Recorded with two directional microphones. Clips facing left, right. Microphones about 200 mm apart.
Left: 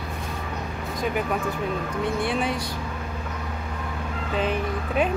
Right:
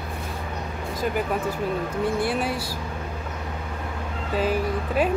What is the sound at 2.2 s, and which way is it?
Speech, 5° right (ahead or behind).